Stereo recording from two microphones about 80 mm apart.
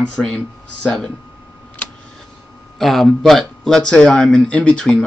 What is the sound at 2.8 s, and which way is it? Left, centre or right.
Speech, centre.